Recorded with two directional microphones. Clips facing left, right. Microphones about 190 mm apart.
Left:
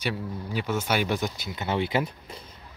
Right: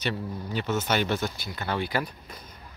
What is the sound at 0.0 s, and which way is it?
Speech, 10° left (ahead or behind).